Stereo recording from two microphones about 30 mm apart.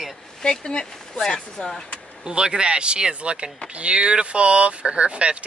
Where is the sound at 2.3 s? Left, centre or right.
Right.